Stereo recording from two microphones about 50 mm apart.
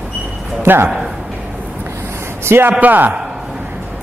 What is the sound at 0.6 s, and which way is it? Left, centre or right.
Speech, right.